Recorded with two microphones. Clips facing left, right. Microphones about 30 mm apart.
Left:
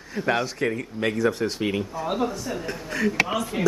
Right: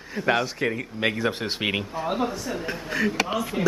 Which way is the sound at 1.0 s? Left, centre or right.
Right.